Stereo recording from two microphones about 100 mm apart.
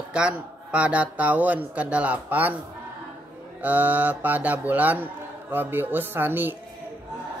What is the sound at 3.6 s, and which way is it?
A man's voice, 15° right (ahead or behind).